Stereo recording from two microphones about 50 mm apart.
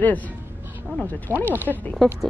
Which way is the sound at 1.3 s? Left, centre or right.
Left.